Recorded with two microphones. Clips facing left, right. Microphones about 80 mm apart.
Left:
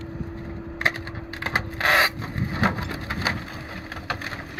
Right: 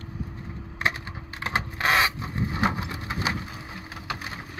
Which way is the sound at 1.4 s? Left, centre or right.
Left.